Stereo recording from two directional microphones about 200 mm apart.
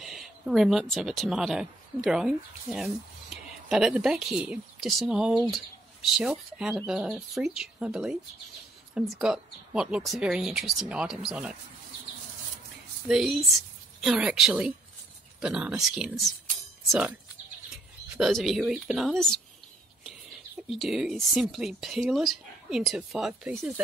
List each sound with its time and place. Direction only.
0.0 s speech: centre (ahead or behind)
13.1 s speech: centre (ahead or behind)
18.1 s speech: centre (ahead or behind)
20.7 s speech: centre (ahead or behind)